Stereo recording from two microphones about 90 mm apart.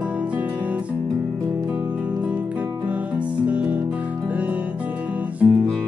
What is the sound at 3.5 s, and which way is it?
Music, 15° right (ahead or behind).